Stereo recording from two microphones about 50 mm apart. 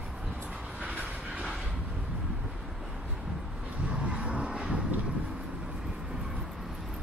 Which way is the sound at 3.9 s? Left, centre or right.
Right.